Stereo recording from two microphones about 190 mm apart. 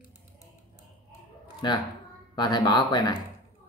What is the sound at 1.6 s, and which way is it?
Speech, 25° left (ahead or behind).